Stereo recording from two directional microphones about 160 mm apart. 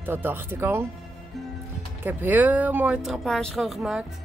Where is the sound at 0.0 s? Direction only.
15° right (ahead or behind).